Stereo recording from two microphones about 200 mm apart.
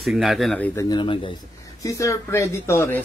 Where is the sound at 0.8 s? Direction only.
25° left (ahead or behind).